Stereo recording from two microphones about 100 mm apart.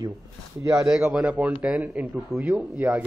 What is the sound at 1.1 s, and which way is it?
Speech, 15° right (ahead or behind).